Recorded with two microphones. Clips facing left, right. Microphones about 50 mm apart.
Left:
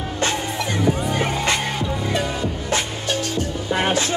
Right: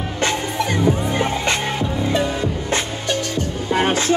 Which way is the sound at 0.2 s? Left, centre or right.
Right.